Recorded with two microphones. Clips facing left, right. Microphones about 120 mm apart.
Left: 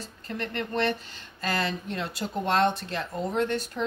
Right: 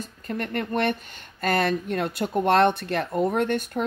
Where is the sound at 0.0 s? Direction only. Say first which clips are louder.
Right 4 dB; 50° right (ahead or behind).